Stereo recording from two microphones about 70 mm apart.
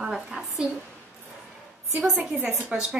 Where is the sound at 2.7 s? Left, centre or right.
Centre.